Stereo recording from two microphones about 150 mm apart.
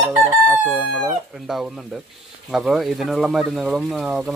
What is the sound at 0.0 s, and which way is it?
Chicken, 10° right (ahead or behind).